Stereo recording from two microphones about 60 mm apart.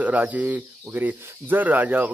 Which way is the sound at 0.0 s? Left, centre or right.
Right.